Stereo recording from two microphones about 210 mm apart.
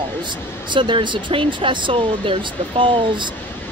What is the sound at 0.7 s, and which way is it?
Speech, 25° right (ahead or behind).